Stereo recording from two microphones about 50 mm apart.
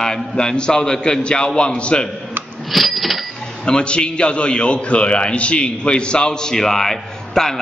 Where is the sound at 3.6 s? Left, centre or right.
Centre.